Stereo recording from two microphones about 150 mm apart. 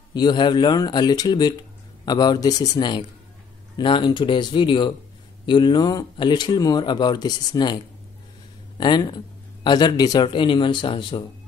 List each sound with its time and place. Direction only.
0.1 s a man's voice: 30° left (ahead or behind)